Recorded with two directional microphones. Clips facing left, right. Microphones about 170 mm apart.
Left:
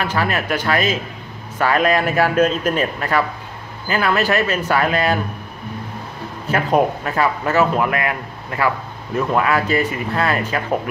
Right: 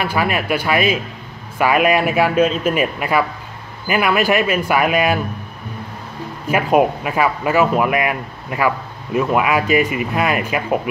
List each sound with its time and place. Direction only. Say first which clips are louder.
0.0 s speech: right 1 dB; 10° right (ahead or behind)
6.5 s speech: right 2 dB; 10° right (ahead or behind)